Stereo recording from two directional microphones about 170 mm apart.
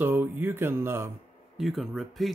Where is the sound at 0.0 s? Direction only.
10° right (ahead or behind).